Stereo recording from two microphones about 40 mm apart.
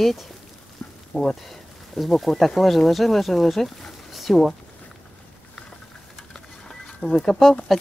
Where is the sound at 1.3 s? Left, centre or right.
Centre.